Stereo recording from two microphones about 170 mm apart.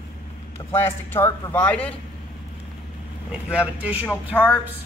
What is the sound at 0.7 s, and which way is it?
Speech, 15° left (ahead or behind).